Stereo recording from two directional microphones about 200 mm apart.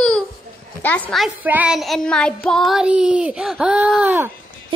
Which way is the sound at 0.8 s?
5° left (ahead or behind).